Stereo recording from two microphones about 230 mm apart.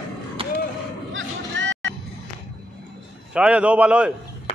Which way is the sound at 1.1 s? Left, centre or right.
Right.